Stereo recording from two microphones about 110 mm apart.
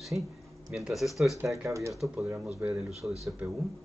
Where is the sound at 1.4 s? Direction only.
25° right (ahead or behind).